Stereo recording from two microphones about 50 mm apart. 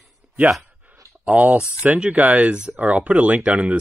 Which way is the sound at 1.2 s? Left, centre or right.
Right.